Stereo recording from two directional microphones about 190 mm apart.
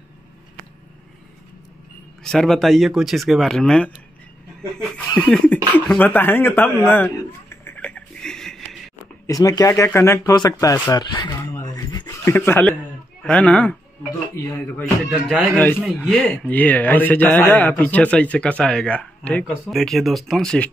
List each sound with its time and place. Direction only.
2.2 s speech: centre (ahead or behind)
4.7 s laughter: 5° left (ahead or behind)
5.9 s a man's voice: 10° left (ahead or behind)
6.9 s a sound: 10° left (ahead or behind)
9.2 s a man's voice: 20° left (ahead or behind)
14.8 s a man's voice: centre (ahead or behind)